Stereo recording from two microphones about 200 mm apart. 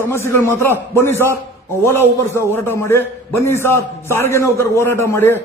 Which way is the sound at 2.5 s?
10° left (ahead or behind).